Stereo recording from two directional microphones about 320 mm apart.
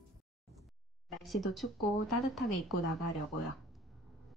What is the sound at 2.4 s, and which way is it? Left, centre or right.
Speech, left.